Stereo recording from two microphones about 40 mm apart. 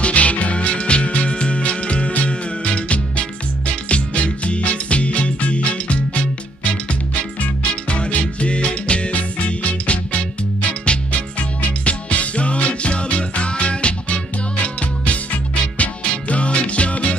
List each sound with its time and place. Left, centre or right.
0.0 s music: left